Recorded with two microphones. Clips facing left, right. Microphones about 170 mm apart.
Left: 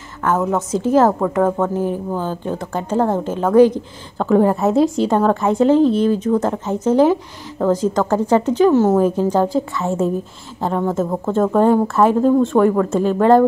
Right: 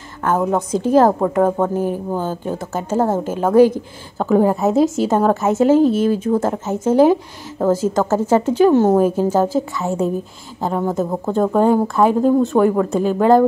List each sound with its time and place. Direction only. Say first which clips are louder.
0.2 s a woman's voice: even; 30° right (ahead or behind)
0.6 s a woman's voice: right 1 dB; 10° right (ahead or behind)
1.2 s speech: right 1 dB; 30° right (ahead or behind)
1.8 s a woman's voice: even; 15° right (ahead or behind)
5.1 s speech: right 1 dB; 20° right (ahead or behind)
5.4 s a woman's voice: even; 5° right (ahead or behind)
6.3 s speech: even; 30° right (ahead or behind)
6.7 s a woman's voice: right 1 dB; 10° right (ahead or behind)